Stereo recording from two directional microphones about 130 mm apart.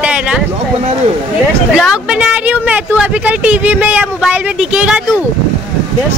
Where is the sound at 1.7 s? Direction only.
5° right (ahead or behind).